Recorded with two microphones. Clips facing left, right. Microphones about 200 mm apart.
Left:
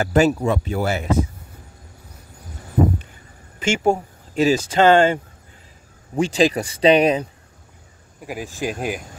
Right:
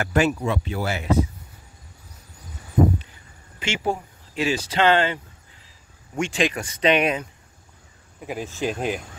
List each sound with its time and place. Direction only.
0.0 s speech: 35° left (ahead or behind)
3.5 s speech: 45° left (ahead or behind)
6.1 s speech: 35° left (ahead or behind)
8.2 s speech: 5° left (ahead or behind)